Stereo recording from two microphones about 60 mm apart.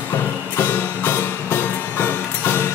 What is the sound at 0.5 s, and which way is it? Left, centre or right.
Music, left.